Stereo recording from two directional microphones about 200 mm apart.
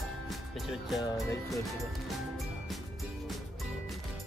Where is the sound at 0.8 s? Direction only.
Centre (ahead or behind).